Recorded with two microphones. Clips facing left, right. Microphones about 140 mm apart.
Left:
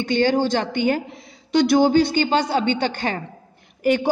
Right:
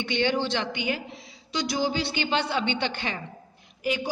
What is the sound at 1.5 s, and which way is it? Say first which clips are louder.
A woman's voice: left 12 dB; 60° left (ahead or behind).